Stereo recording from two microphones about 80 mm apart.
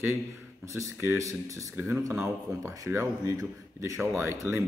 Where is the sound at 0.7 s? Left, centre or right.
Right.